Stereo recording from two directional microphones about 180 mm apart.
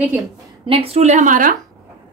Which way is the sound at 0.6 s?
35° right (ahead or behind).